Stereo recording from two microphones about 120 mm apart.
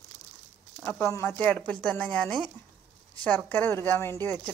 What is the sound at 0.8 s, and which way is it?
Speech, 20° left (ahead or behind).